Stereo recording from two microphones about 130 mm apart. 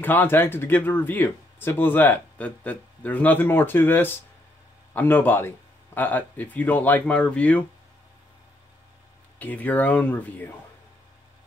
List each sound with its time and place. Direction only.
0.0 s speech: 15° left (ahead or behind)
9.4 s speech: 10° left (ahead or behind)